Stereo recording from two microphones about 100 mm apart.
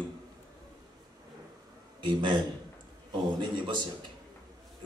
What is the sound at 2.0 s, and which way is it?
A man's voice, 50° right (ahead or behind).